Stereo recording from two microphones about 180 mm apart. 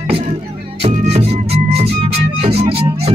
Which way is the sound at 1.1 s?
35° right (ahead or behind).